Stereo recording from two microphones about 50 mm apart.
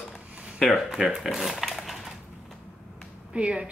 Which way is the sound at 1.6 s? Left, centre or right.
Centre.